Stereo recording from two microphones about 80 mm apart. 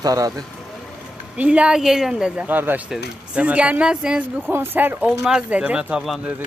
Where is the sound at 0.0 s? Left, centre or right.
Right.